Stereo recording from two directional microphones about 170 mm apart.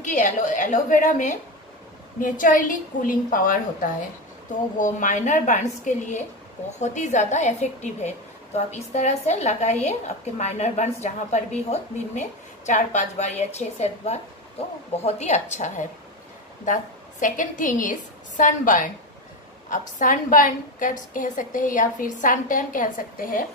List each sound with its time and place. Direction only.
0.0 s a woman's voice: 45° left (ahead or behind)
4.7 s a woman's voice: 50° left (ahead or behind)